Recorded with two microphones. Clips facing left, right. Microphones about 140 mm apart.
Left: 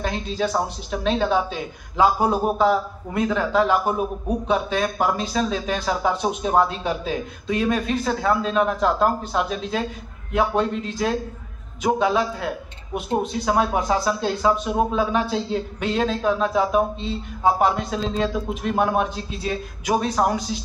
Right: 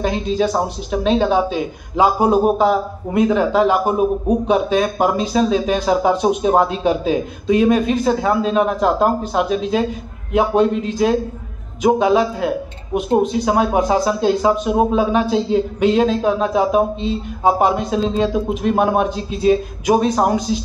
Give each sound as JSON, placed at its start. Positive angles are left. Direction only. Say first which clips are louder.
{"t": 0.0, "sound": "speech", "louder": "right 7 dB", "side_deg": -20}